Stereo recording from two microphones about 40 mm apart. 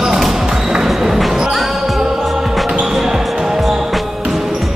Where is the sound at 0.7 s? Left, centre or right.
Centre.